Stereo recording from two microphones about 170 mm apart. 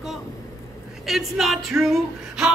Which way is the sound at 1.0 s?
Centre (ahead or behind).